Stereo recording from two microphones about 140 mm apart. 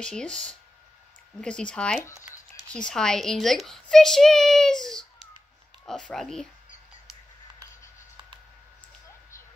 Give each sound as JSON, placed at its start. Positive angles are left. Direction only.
{"t": 0.0, "sound": "a child's voice", "side_deg": 5}
{"t": 2.0, "sound": "a sound", "side_deg": 20}
{"t": 2.7, "sound": "a child's voice", "side_deg": 5}